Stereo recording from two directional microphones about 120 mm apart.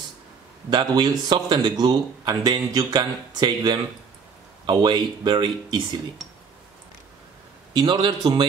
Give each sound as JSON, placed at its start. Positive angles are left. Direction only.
{"t": 0.7, "sound": "a man's voice", "side_deg": -40}
{"t": 7.7, "sound": "a man's voice", "side_deg": -40}